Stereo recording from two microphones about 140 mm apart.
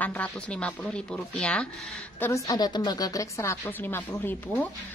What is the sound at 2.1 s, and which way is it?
Speech, 20° left (ahead or behind).